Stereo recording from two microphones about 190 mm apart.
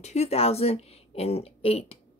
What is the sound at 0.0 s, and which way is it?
A woman's voice, 35° left (ahead or behind).